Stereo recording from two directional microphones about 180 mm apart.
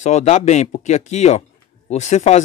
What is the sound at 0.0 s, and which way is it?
A man's voice, 40° left (ahead or behind).